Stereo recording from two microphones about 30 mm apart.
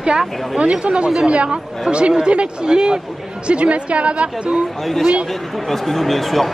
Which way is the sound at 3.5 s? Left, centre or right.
Right.